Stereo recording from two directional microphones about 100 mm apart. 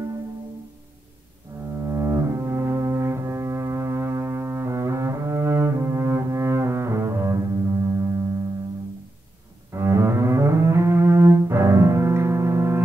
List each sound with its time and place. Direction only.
1.8 s music: 30° right (ahead or behind)
9.7 s cello: 30° right (ahead or behind)